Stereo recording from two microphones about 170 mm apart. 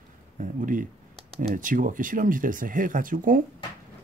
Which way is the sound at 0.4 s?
50° right (ahead or behind).